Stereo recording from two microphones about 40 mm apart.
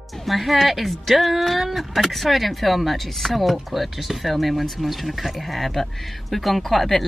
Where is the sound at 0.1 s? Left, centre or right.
Centre.